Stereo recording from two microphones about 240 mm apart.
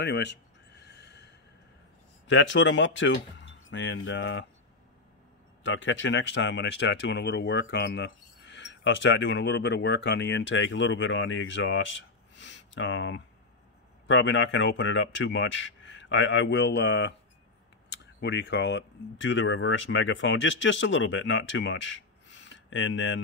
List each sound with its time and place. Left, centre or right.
0.0 s a sound: left
2.2 s speech: left
5.6 s speech: left
18.2 s speech: left